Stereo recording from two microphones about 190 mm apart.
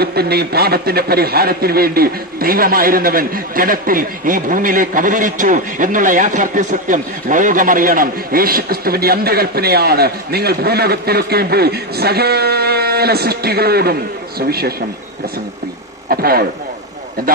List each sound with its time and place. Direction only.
0.0 s a man's voice: 55° right (ahead or behind)
16.1 s a man's voice: 50° right (ahead or behind)